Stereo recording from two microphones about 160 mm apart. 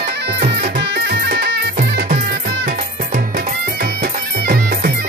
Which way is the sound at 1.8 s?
75° right (ahead or behind).